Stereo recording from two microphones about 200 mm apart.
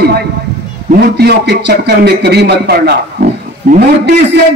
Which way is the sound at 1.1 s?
55° right (ahead or behind).